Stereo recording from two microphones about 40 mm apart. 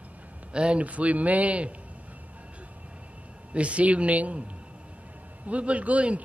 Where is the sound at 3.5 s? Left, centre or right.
Right.